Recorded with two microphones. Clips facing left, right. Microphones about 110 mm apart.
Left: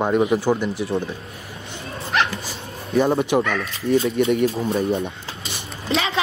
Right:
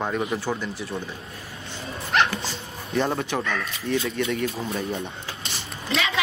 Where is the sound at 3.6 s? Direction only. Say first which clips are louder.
Left 6 dB; 30° left (ahead or behind).